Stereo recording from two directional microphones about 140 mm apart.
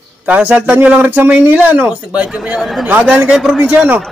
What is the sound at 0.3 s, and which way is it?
A man's voice, 10° right (ahead or behind).